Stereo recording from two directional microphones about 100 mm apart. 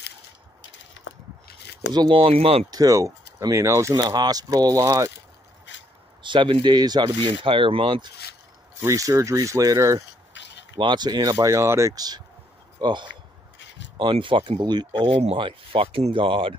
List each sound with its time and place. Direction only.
2.0 s speech: 60° right (ahead or behind); by 2.6 s 75° right (ahead or behind)
2.7 s speech: 35° right (ahead or behind)
6.2 s speech: 55° right (ahead or behind)
8.7 s speech: 35° right (ahead or behind)
10.8 s speech: 50° right (ahead or behind)
11.4 s speech: 30° right (ahead or behind)
13.9 s speech: 55° right (ahead or behind)
15.0 s speech: 65° right (ahead or behind)